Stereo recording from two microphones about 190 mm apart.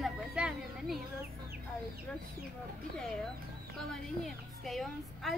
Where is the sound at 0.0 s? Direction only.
5° right (ahead or behind).